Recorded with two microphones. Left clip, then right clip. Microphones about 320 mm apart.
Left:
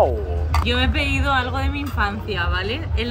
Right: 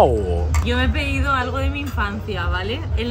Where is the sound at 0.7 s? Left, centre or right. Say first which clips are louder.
Left 1 dB; centre.